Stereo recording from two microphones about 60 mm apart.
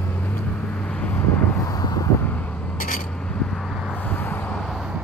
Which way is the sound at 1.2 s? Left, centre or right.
Left.